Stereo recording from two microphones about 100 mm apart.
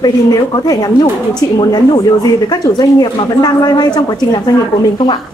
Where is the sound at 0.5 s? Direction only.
35° left (ahead or behind).